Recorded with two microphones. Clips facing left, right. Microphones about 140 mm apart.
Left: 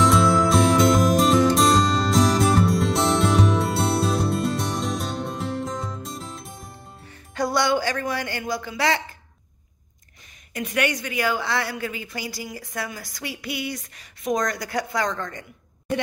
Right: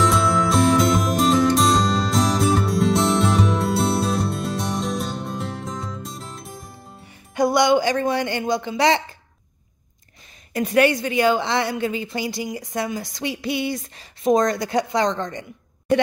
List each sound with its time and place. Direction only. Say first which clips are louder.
0.0 s music: left 1 dB; centre (ahead or behind)
7.3 s speech: right 5 dB; 15° right (ahead or behind)
10.5 s a woman's voice: right 7 dB; 35° right (ahead or behind)